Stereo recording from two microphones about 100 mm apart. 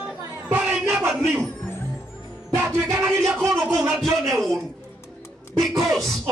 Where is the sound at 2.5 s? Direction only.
25° right (ahead or behind).